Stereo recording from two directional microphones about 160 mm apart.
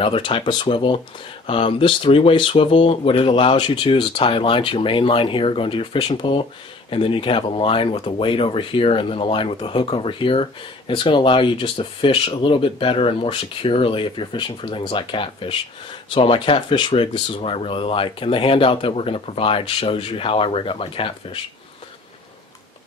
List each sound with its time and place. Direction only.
0.0 s speech: 35° left (ahead or behind)